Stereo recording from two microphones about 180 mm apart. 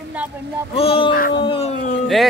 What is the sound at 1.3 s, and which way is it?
Speech, 30° left (ahead or behind).